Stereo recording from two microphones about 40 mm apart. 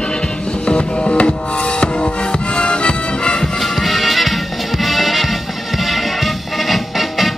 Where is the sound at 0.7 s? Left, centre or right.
Left.